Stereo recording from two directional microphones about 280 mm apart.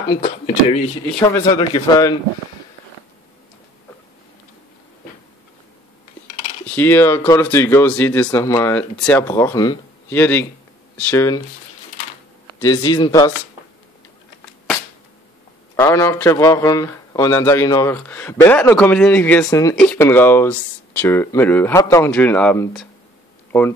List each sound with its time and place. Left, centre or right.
0.1 s speech: left
6.6 s speech: centre
12.5 s speech: centre
15.7 s speech: centre